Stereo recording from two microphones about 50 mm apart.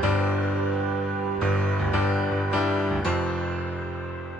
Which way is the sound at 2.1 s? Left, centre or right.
Centre.